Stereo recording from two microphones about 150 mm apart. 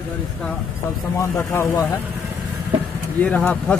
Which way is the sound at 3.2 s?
10° left (ahead or behind).